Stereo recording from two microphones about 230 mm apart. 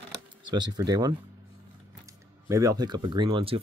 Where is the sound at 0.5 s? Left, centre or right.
Centre.